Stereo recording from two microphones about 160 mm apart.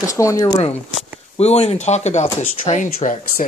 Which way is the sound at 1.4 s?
40° left (ahead or behind).